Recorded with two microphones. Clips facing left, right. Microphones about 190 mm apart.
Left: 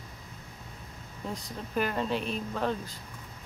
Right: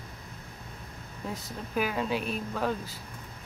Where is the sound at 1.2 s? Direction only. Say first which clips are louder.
Even; 5° right (ahead or behind).